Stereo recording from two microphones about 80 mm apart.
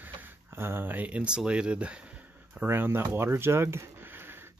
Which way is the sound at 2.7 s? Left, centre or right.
Right.